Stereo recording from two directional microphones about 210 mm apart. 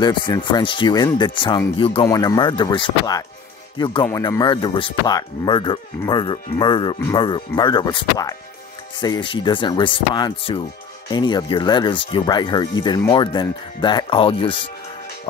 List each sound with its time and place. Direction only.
0.0 s speech: 20° left (ahead or behind)